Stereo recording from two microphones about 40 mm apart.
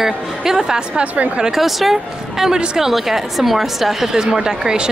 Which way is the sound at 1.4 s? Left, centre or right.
Centre.